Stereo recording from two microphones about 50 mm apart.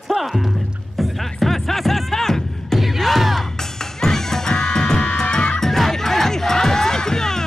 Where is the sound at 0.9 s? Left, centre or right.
Centre.